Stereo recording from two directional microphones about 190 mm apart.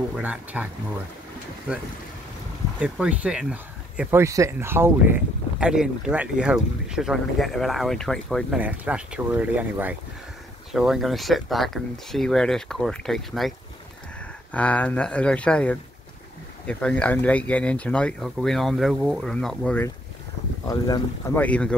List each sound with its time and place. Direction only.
0.2 s speech: 10° right (ahead or behind)
2.8 s speech: 5° right (ahead or behind)
14.5 s speech: 5° left (ahead or behind)
20.6 s speech: 20° left (ahead or behind)
21.4 s speech: 5° left (ahead or behind)